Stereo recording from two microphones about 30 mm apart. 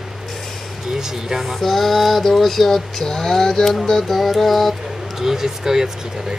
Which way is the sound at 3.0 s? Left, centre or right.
Centre.